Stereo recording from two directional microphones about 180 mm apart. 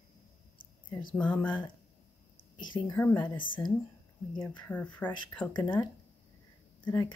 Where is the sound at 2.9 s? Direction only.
10° left (ahead or behind).